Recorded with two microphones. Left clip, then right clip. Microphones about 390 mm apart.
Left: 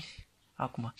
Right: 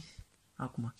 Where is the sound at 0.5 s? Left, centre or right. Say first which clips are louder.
Left 6 dB; centre.